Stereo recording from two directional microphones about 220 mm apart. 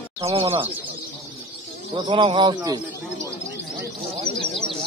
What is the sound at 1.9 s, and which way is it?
Speech, 20° right (ahead or behind).